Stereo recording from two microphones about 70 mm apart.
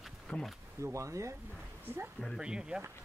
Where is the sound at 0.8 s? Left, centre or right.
Right.